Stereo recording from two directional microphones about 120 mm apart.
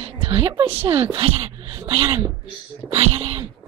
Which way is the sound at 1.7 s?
35° right (ahead or behind).